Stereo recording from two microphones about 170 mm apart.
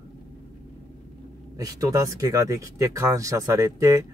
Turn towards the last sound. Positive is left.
turn(degrees=-15)  # may be behind; listen again after turning